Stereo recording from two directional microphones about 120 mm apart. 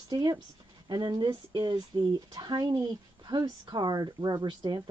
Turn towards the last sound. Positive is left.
turn(degrees=-35)  # may be behind; listen again after turning